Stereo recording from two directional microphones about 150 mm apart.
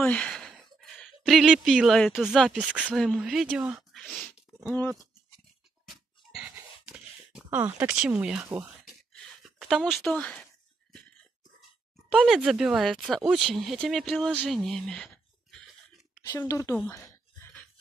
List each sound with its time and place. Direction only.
0.0 s speech: 10° left (ahead or behind)
4.6 s speech: 15° left (ahead or behind)
5.9 s dog: 5° right (ahead or behind)
6.5 s a sound: 10° right (ahead or behind); by 10.4 s 10° left (ahead or behind)
12.2 s speech: 5° right (ahead or behind)
16.3 s speech: 20° left (ahead or behind)
16.9 s a sound: 15° left (ahead or behind)